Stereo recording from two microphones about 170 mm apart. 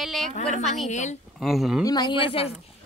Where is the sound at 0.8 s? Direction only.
40° left (ahead or behind).